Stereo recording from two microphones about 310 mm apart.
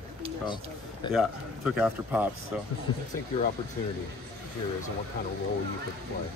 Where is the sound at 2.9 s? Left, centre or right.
Centre.